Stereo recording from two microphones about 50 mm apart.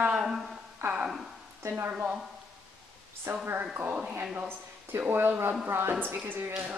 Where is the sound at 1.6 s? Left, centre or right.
Right.